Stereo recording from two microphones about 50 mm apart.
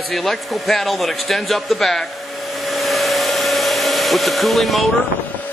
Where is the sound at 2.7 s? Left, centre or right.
Centre.